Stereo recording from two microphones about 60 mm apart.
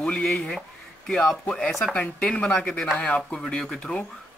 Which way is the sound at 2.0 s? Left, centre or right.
Centre.